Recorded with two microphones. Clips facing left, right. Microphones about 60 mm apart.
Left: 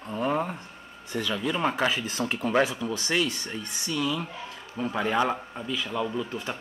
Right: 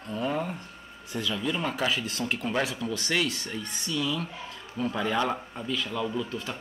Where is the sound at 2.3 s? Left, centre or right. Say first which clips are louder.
Left 5 dB; left.